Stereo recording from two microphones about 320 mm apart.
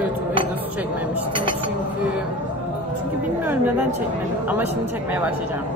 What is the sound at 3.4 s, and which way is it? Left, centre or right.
Speech, centre.